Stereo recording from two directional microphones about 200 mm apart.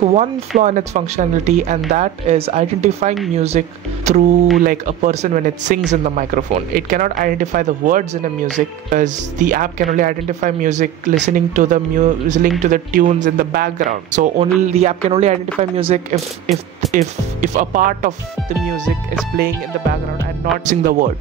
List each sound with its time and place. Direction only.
0.0 s speech: 30° right (ahead or behind)
19.3 s speech: 50° right (ahead or behind)
20.6 s speech: 40° right (ahead or behind)